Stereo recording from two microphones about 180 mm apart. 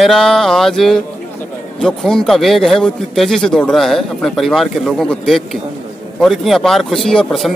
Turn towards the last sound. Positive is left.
turn(degrees=0)  # may be behind; listen again after turning